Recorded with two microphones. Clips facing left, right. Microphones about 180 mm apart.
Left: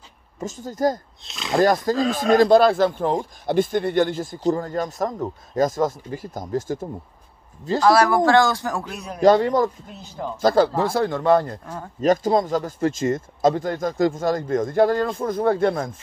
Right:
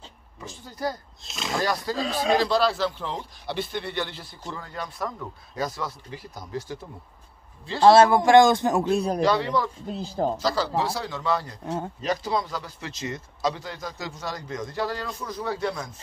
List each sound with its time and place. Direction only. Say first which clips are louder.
0.4 s speech: left 9 dB; 45° left (ahead or behind)
1.2 s speech: left 5 dB; centre (ahead or behind)
1.6 s speech: left 9 dB; 50° left (ahead or behind)
7.8 s speech: right 1 dB; 25° right (ahead or behind)
9.2 s speech: left 7 dB; 45° left (ahead or behind)
9.8 s speech: right 5 dB; 35° right (ahead or behind)
10.4 s speech: left 7 dB; 50° left (ahead or behind)